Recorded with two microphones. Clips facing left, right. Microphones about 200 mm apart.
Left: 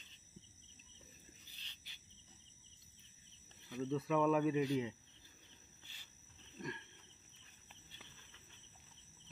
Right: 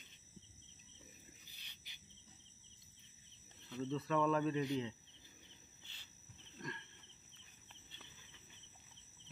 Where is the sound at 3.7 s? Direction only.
10° left (ahead or behind).